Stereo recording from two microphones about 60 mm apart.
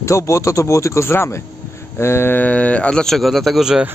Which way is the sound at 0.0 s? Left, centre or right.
Left.